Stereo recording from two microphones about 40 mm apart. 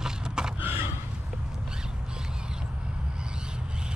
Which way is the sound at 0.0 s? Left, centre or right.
Centre.